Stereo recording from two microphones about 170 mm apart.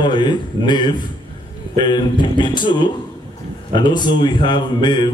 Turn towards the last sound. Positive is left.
turn(degrees=25)  # may be behind; listen again after turning